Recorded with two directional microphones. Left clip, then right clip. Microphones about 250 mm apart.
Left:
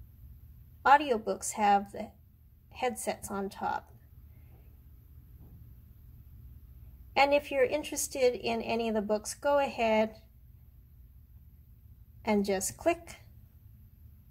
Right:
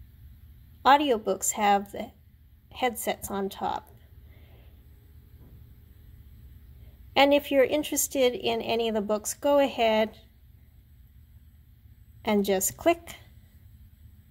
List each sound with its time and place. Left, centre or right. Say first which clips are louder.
0.8 s speech: right 3 dB; right
7.2 s speech: right 5 dB; right
12.4 s speech: right 5 dB; right